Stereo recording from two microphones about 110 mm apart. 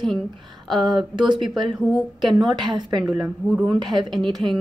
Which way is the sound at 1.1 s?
45° right (ahead or behind).